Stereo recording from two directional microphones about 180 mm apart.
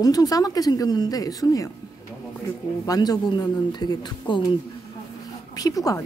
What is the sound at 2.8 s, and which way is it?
Speech, 20° left (ahead or behind).